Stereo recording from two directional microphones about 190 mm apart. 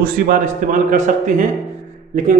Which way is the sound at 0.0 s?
45° right (ahead or behind).